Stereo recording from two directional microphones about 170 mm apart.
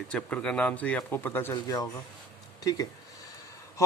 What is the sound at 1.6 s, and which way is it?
Speech, 25° left (ahead or behind).